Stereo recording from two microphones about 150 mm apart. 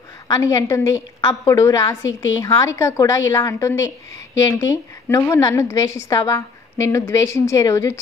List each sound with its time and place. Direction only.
0.3 s a woman's voice: 20° left (ahead or behind)